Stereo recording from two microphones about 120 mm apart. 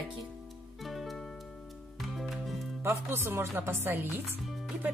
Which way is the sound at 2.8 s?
20° right (ahead or behind).